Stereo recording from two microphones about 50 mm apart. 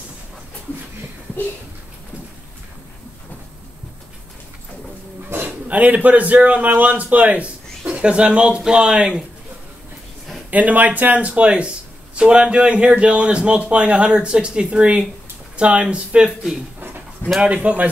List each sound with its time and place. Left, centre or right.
5.7 s a man's voice: right
10.5 s a man's voice: right
17.4 s a man's voice: right